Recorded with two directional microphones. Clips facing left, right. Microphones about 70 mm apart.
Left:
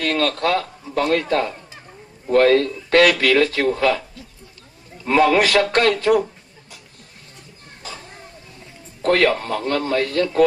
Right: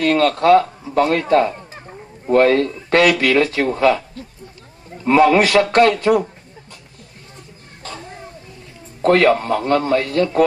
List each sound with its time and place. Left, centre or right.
0.0 s speech: right
9.0 s speech: right